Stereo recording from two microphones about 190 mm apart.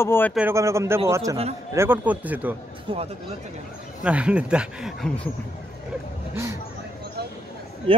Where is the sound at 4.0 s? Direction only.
5° right (ahead or behind).